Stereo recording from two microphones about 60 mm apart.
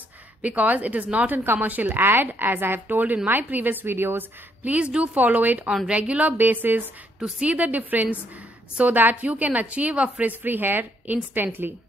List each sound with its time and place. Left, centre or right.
0.4 s a woman's voice: right
4.6 s a woman's voice: right
6.3 s a woman's voice: right
7.2 s a woman's voice: centre
10.2 s a woman's voice: right